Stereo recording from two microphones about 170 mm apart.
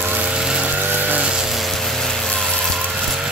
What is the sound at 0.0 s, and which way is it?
Vehicle, 10° right (ahead or behind).